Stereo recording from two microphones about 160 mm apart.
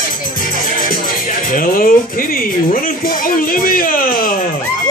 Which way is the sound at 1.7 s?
60° left (ahead or behind).